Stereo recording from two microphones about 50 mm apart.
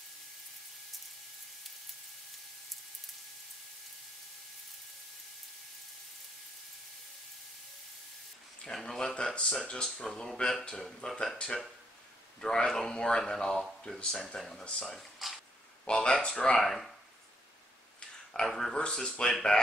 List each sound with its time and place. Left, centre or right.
8.6 s speech: centre
15.0 s a sound: centre
15.8 s speech: centre
16.5 s speech: centre
18.4 s speech: centre